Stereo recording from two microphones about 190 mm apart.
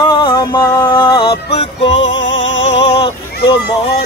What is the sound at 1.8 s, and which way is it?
Music, 75° left (ahead or behind).